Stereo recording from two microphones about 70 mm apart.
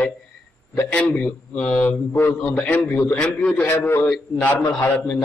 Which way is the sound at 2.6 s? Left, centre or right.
Left.